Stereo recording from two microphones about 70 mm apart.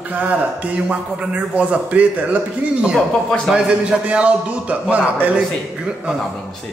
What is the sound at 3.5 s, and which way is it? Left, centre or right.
A man's voice, centre.